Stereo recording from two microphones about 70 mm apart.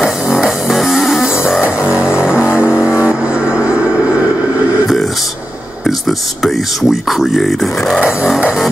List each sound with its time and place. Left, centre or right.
0.0 s music: centre
4.8 s a sound: centre
5.9 s speech: centre
8.0 s music: centre